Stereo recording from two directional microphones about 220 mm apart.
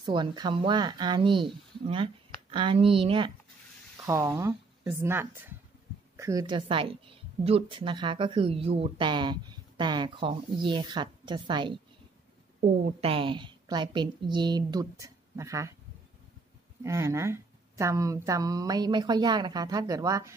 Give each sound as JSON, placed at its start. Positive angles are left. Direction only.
{"t": 0.0, "sound": "a woman's voice", "side_deg": -20}
{"t": 4.0, "sound": "a woman's voice", "side_deg": -15}
{"t": 16.8, "sound": "speech", "side_deg": -15}